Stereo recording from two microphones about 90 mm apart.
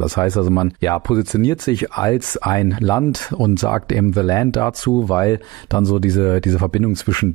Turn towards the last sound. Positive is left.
turn(degrees=50)  # may be behind; listen again after turning